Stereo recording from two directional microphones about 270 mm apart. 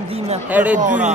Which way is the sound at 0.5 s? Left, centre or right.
Centre.